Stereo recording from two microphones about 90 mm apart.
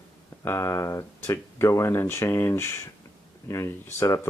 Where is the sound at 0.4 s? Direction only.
35° left (ahead or behind).